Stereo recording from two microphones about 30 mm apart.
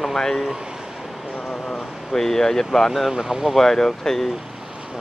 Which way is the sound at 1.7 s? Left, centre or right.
Centre.